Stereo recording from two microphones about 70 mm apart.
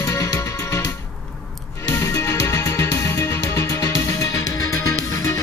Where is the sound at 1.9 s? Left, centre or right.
Left.